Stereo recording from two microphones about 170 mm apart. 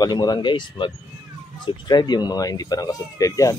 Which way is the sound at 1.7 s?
25° left (ahead or behind).